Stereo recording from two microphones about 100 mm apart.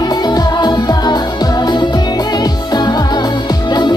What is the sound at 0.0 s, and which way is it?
Music, 40° left (ahead or behind).